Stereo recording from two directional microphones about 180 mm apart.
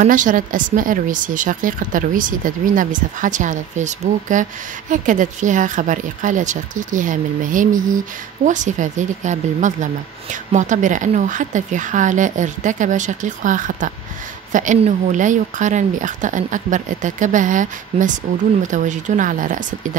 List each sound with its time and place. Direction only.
0.0 s speech: 45° right (ahead or behind)